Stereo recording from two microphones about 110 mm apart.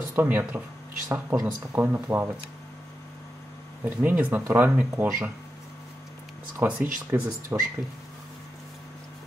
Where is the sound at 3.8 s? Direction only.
15° right (ahead or behind).